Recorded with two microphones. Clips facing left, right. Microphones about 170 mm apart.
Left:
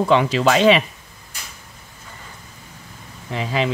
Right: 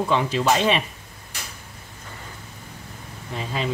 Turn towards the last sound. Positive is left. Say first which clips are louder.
# left 6 dB
turn(degrees=90)